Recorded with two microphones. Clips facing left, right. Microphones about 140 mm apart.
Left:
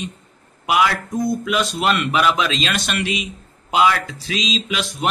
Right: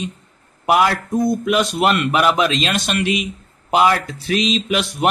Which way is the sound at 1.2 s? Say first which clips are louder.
Right 3 dB; 55° right (ahead or behind).